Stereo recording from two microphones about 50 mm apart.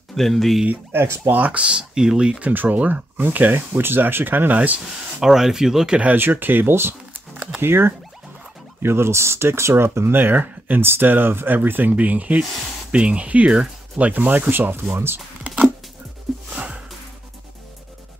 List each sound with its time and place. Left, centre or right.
0.1 s speech: centre
0.9 s speech: right
1.3 s speech: right
2.4 s speech: right
4.7 s speech: centre
6.1 s speech: right
6.7 s speech: right
14.1 s speech: right
15.4 s a sound: right
16.5 s music: right